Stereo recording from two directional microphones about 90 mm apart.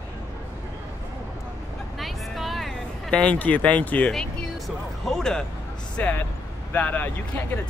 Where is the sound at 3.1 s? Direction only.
15° left (ahead or behind).